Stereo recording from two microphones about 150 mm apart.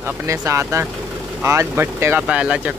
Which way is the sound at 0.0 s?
20° right (ahead or behind).